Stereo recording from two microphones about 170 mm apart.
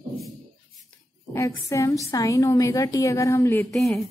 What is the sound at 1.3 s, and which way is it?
A woman's voice, 20° left (ahead or behind).